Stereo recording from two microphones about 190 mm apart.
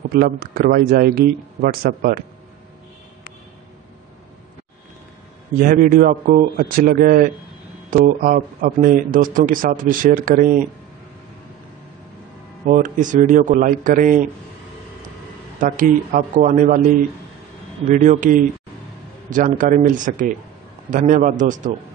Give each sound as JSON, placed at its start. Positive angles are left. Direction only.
{"t": 0.1, "sound": "speech", "side_deg": -55}
{"t": 5.6, "sound": "speech", "side_deg": -50}
{"t": 12.6, "sound": "speech", "side_deg": -45}
{"t": 15.6, "sound": "speech", "side_deg": -45}
{"t": 17.8, "sound": "speech", "side_deg": -40}